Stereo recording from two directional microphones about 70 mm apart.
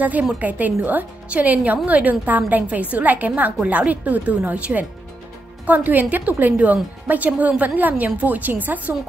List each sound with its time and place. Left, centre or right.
0.4 s a woman's voice: right